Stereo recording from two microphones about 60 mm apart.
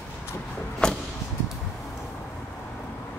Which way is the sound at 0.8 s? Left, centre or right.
Centre.